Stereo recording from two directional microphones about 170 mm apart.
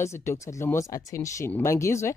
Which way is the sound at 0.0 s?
15° left (ahead or behind).